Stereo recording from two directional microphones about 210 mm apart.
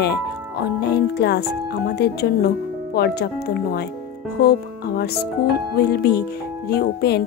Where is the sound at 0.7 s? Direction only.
50° left (ahead or behind).